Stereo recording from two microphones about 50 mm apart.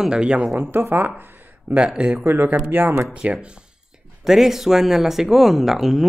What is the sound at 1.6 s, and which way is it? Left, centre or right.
Speech, right.